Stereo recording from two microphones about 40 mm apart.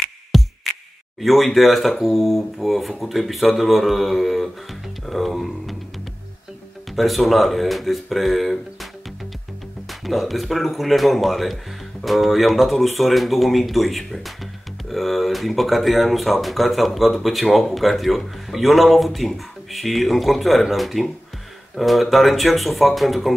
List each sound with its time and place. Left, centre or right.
0.3 s music: centre
1.2 s speech: centre
7.0 s speech: centre
9.8 s speech: centre